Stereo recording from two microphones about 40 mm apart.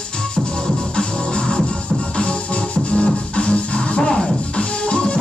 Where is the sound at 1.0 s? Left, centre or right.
Left.